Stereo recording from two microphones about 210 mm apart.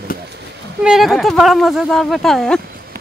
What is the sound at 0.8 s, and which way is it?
Speech, centre (ahead or behind).